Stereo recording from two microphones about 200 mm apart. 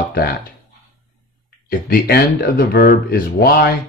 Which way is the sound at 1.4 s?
50° left (ahead or behind).